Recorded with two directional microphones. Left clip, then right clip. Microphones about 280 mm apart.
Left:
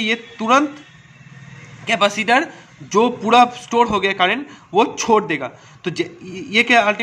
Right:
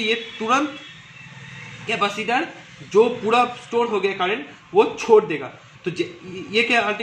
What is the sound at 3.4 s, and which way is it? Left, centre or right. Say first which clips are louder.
A man's voice: left 6 dB; left.